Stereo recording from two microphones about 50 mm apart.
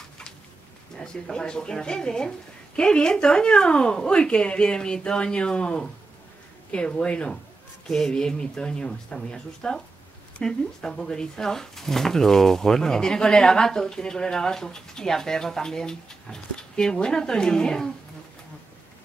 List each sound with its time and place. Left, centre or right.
0.9 s speech: centre